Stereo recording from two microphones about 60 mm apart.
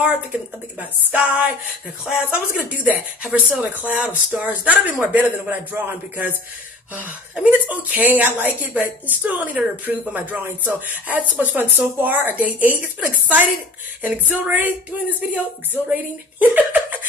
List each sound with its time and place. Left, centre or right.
0.0 s speech: right
7.4 s speech: right